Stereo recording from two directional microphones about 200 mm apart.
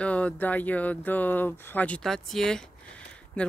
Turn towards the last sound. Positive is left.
turn(degrees=5)  # may be behind; listen again after turning